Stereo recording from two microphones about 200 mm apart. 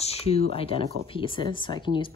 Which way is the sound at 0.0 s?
30° left (ahead or behind).